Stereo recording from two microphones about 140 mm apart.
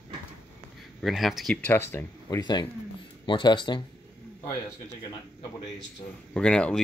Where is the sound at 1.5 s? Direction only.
15° left (ahead or behind).